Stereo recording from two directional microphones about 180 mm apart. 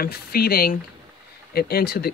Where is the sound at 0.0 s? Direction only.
55° left (ahead or behind).